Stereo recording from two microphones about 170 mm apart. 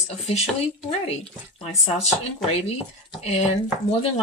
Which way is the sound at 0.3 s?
35° left (ahead or behind).